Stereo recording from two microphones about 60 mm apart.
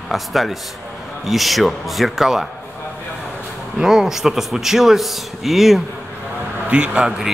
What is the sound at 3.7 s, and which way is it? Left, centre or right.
Speech, centre.